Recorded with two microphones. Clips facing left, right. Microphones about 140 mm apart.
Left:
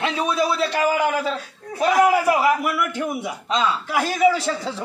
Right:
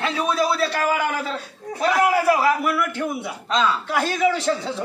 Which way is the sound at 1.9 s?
15° left (ahead or behind).